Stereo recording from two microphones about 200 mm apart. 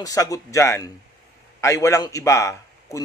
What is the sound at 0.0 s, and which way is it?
Speech, 15° left (ahead or behind).